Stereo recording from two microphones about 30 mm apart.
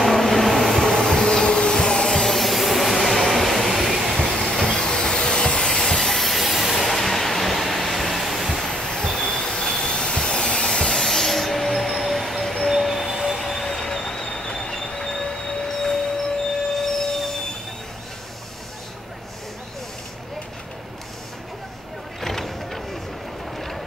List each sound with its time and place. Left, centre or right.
0.0 s vehicle: centre
0.8 s vacuum cleaner: centre
2.2 s train: centre
4.2 s train: left
4.6 s train: centre
4.8 s a sound: left; by 8.6 s centre
8.9 s vehicle: left
9.7 s train: centre
9.9 s a sound: left
11.0 s train: centre
13.4 s train: centre
22.2 s a sound: centre